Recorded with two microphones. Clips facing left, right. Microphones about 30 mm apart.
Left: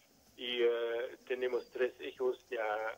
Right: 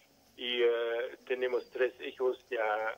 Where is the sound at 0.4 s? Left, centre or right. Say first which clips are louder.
Right 3 dB; centre.